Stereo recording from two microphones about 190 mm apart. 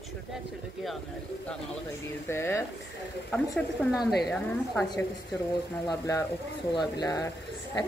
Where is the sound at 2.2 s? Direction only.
15° left (ahead or behind).